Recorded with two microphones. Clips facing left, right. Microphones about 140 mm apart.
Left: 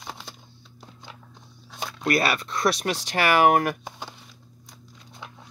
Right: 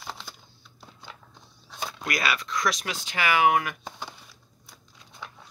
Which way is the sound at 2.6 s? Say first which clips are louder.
Left 5 dB; 40° left (ahead or behind).